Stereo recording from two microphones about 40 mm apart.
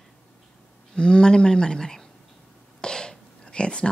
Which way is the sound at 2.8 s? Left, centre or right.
Centre.